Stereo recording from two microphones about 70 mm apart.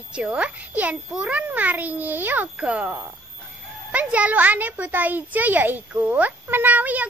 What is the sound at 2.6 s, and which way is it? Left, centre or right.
A child's voice, centre.